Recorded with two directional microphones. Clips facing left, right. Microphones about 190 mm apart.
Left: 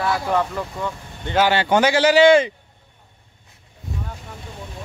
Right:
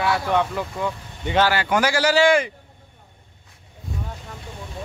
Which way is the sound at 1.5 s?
25° left (ahead or behind).